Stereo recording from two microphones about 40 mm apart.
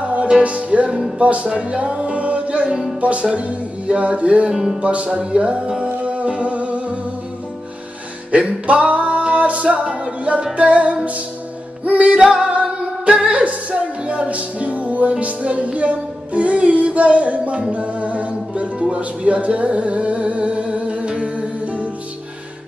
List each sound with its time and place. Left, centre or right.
0.0 s music: right
1.5 s music: right
4.5 s speech: centre
4.8 s speech: right
6.0 s music: right
8.3 s music: right
12.2 s speech: centre
12.4 s music: right